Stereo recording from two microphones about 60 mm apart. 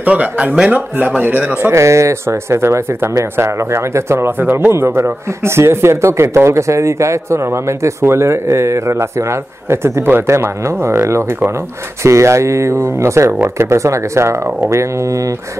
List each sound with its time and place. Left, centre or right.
0.0 s speech: right
1.6 s speech: right
4.4 s speech: right